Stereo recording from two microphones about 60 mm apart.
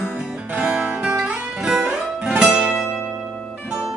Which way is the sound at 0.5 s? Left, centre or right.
Centre.